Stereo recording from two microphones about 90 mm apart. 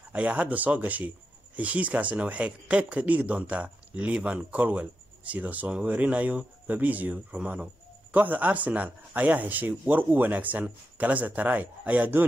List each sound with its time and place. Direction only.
0.1 s speech: 15° right (ahead or behind)